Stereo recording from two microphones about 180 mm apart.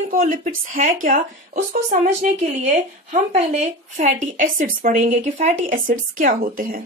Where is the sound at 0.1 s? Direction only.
50° right (ahead or behind).